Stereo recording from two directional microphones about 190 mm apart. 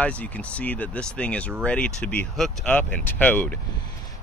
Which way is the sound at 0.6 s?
10° left (ahead or behind).